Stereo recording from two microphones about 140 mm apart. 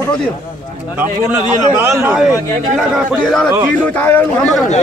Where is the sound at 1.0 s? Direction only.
15° right (ahead or behind).